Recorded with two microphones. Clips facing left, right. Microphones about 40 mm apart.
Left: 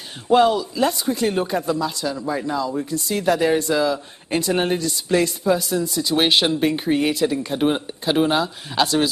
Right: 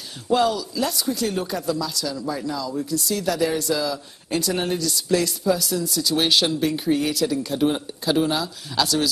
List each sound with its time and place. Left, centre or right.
0.3 s speech: left